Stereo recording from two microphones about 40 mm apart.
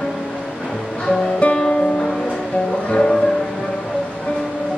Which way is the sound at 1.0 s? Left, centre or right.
Centre.